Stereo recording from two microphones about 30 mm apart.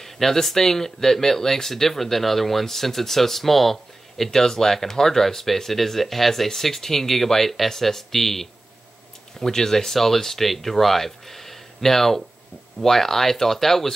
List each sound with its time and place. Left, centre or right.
0.0 s speech: centre
4.3 s speech: centre